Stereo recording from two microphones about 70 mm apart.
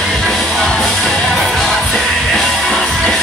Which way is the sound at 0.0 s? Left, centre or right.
Centre.